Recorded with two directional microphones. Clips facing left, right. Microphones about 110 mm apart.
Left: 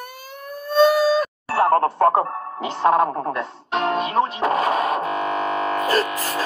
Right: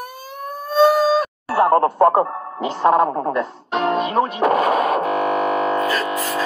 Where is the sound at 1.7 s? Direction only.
20° right (ahead or behind).